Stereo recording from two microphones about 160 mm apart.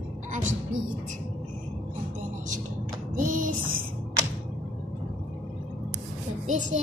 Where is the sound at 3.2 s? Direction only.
55° right (ahead or behind).